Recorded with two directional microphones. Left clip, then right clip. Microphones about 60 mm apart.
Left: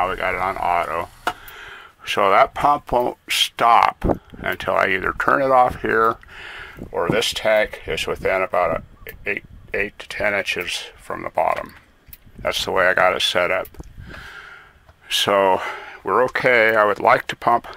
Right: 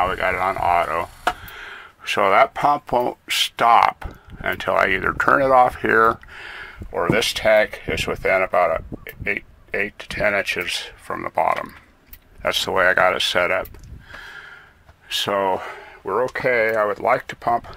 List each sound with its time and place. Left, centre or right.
0.0 s speech: centre
6.4 s speech: centre
14.2 s a sound: left
15.0 s speech: left
15.4 s speech: left
16.0 s speech: left
16.3 s speech: left